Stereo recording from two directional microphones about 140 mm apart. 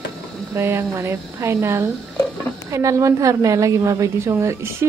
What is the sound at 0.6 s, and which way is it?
A woman's voice, 20° right (ahead or behind).